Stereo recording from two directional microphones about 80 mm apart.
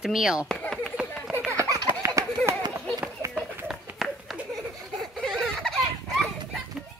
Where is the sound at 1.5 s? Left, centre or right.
Right.